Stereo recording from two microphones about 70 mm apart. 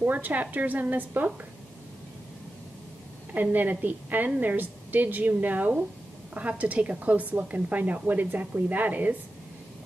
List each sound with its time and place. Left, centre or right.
0.0 s speech: right
3.3 s speech: right